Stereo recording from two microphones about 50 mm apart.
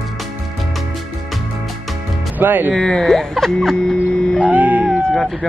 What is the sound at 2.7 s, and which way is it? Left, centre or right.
Speech, centre.